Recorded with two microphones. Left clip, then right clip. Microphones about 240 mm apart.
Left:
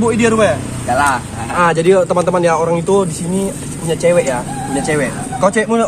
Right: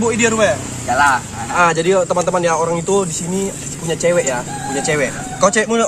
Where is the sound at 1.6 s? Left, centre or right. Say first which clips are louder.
Left 2 dB; centre.